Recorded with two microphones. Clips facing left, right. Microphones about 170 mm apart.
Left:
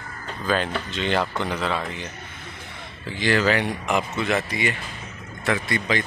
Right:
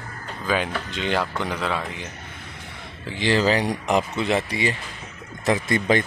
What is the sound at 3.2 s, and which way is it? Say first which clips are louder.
Speech: right 1 dB; 30° right (ahead or behind).